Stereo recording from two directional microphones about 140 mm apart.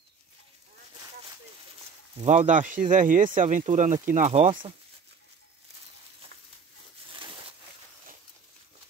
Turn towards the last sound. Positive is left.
turn(degrees=-35)  # may be behind; listen again after turning